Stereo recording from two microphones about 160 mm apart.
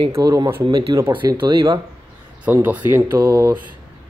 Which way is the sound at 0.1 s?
25° right (ahead or behind).